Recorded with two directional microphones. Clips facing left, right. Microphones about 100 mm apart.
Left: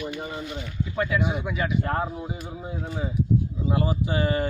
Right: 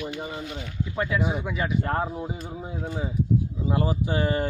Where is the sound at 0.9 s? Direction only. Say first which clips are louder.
Left 1 dB; 30° right (ahead or behind).